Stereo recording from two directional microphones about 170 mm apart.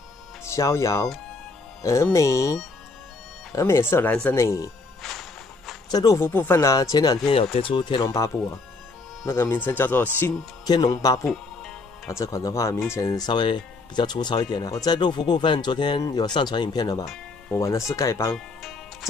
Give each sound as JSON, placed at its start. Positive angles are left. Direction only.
{"t": 0.5, "sound": "speech", "side_deg": 15}
{"t": 5.9, "sound": "speech", "side_deg": 20}
{"t": 10.2, "sound": "speech", "side_deg": 25}
{"t": 17.0, "sound": "music", "side_deg": 0}
{"t": 17.6, "sound": "speech", "side_deg": 15}
{"t": 18.3, "sound": "music", "side_deg": 0}